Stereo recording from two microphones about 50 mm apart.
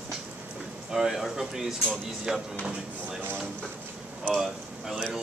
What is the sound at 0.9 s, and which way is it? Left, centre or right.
Speech, centre.